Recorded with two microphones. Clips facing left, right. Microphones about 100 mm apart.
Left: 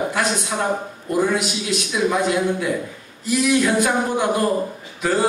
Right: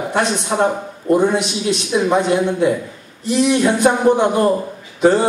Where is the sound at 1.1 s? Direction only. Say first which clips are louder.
Right 5 dB; 25° right (ahead or behind).